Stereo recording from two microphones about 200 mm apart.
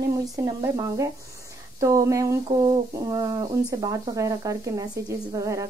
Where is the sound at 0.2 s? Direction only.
15° right (ahead or behind).